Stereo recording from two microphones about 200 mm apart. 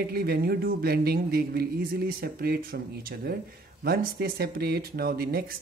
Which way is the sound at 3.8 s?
50° right (ahead or behind).